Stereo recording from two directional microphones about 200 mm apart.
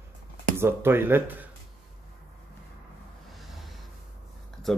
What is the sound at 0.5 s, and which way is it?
Speech, 10° right (ahead or behind).